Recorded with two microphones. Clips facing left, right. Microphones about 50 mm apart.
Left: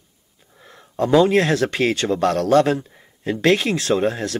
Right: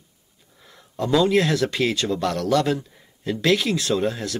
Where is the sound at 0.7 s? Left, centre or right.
Left.